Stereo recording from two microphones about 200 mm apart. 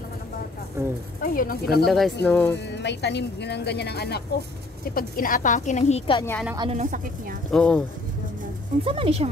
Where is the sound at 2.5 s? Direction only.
60° left (ahead or behind); by 6.2 s 30° left (ahead or behind).